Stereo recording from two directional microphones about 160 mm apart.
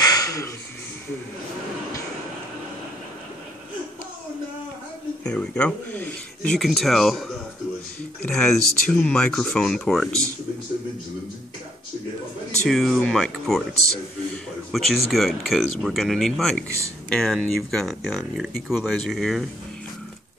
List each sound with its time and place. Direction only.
0.0 s a sound: 20° left (ahead or behind)
5.2 s speech: 5° left (ahead or behind)
12.6 s speech: centre (ahead or behind)